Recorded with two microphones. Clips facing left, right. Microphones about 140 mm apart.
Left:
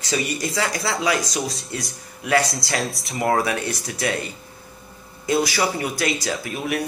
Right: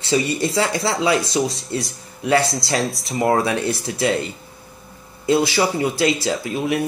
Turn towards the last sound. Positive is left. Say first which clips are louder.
# right 4 dB
turn(degrees=-25)  # may be behind; listen again after turning